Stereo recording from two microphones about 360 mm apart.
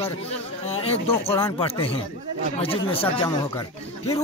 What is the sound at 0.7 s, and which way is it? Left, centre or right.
Speech, centre.